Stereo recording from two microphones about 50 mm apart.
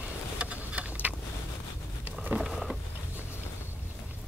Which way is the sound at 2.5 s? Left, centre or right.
Centre.